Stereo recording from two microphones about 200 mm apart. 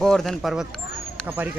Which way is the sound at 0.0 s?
Centre (ahead or behind).